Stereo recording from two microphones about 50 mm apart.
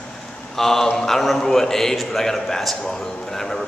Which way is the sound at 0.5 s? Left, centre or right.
Centre.